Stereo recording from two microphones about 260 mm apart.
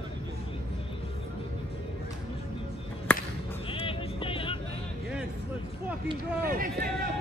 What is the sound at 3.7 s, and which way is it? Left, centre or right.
Vehicle, left.